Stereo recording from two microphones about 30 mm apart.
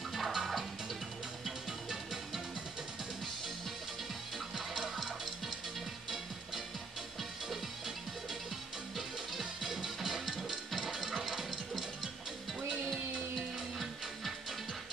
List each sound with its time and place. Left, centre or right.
0.1 s music: centre
4.6 s music: centre
7.4 s music: centre